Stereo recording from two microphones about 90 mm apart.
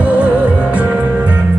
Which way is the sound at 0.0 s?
15° right (ahead or behind).